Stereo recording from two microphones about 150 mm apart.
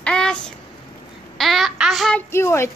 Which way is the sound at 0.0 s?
5° left (ahead or behind).